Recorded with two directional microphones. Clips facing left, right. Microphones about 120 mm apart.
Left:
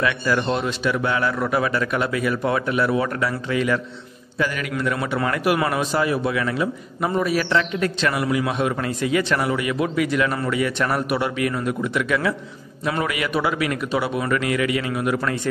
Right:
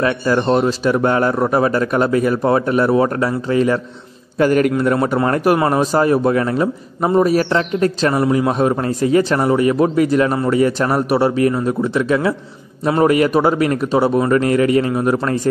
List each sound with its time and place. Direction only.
0.0 s speech: 40° right (ahead or behind)
4.4 s a man's voice: 45° right (ahead or behind)